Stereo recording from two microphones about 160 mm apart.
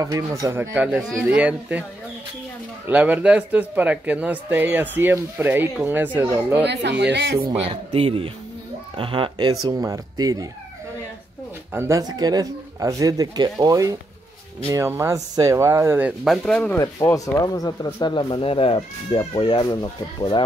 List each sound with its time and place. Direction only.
0.0 s speech: 20° right (ahead or behind)
2.9 s speech: 10° right (ahead or behind)
6.6 s speech: 90° right
7.3 s speech: 35° right (ahead or behind)
11.7 s speech: 20° right (ahead or behind); by 16.7 s 5° left (ahead or behind)
16.7 s speech: 20° left (ahead or behind)